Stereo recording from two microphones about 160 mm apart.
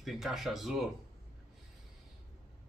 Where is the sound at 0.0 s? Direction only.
Centre (ahead or behind).